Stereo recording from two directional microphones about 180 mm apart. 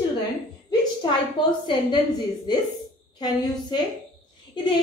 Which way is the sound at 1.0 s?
25° left (ahead or behind).